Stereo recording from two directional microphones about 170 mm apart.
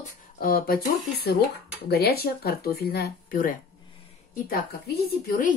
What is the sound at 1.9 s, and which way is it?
A woman's voice, 70° left (ahead or behind).